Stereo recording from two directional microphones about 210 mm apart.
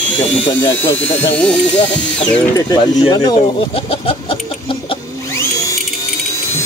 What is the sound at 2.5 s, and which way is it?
Speech, 20° left (ahead or behind).